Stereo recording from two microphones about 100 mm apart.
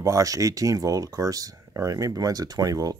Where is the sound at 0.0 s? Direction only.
35° right (ahead or behind).